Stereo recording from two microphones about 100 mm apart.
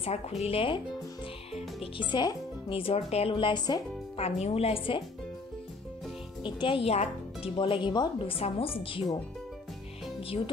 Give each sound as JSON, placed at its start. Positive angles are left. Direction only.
{"t": 0.0, "sound": "a woman's voice", "side_deg": 90}
{"t": 2.0, "sound": "speech", "side_deg": 50}
{"t": 2.8, "sound": "speech", "side_deg": 85}
{"t": 4.2, "sound": "a woman's voice", "side_deg": 90}
{"t": 6.4, "sound": "a woman's voice", "side_deg": 55}
{"t": 10.2, "sound": "a woman's voice", "side_deg": 70}